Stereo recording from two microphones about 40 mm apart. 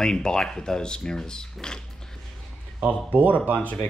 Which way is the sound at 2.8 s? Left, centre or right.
Right.